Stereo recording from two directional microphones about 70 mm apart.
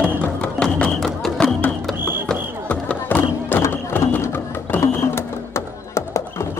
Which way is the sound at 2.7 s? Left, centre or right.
Left.